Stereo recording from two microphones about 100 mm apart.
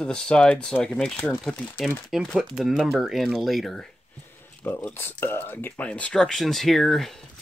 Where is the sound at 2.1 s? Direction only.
5° right (ahead or behind).